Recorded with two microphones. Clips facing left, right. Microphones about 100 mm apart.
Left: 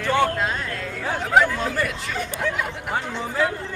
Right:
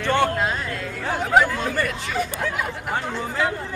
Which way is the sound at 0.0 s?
5° left (ahead or behind).